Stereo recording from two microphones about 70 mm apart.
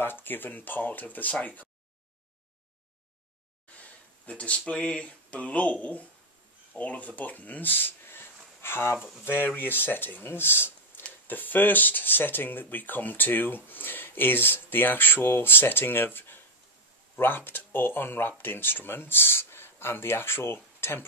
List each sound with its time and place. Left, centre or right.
0.0 s speech: left
4.3 s speech: centre; by 21.0 s left